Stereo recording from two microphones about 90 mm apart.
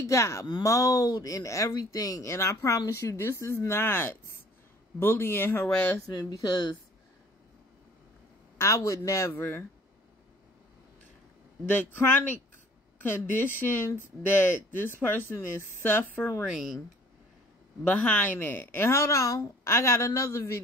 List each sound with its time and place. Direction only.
0.0 s speech: 35° left (ahead or behind); by 5.9 s 20° left (ahead or behind)
6.0 s speech: 45° left (ahead or behind)
8.5 s speech: 35° left (ahead or behind)
9.3 s speech: 25° left (ahead or behind)
11.7 s speech: 20° left (ahead or behind)
16.4 s speech: centre (ahead or behind)
17.8 s speech: 15° left (ahead or behind); by 20.6 s 35° left (ahead or behind)